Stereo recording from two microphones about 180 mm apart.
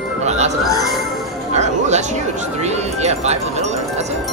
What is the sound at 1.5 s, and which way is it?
Music, 40° right (ahead or behind).